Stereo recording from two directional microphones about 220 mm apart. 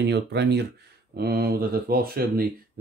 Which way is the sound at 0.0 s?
50° right (ahead or behind).